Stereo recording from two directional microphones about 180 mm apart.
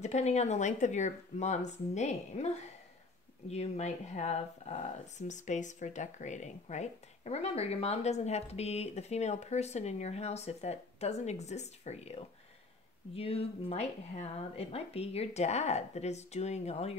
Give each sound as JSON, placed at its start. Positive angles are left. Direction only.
{"t": 0.0, "sound": "speech", "side_deg": 40}